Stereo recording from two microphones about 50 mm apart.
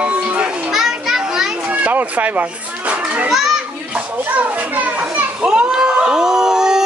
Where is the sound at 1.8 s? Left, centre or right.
Right.